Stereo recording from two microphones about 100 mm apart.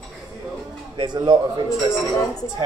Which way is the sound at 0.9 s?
45° right (ahead or behind).